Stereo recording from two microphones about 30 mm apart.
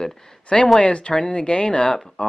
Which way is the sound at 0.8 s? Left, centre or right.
Left.